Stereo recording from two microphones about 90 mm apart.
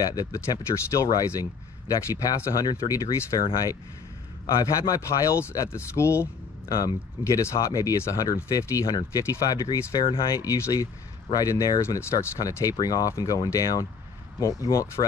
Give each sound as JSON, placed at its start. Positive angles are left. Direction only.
{"t": 0.0, "sound": "speech", "side_deg": 45}
{"t": 4.6, "sound": "speech", "side_deg": 40}
{"t": 6.7, "sound": "speech", "side_deg": 40}
{"t": 9.9, "sound": "speech", "side_deg": 60}
{"t": 10.3, "sound": "speech", "side_deg": 40}
{"t": 12.0, "sound": "speech", "side_deg": 30}